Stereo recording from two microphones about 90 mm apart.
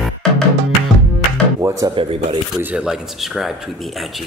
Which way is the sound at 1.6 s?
35° right (ahead or behind).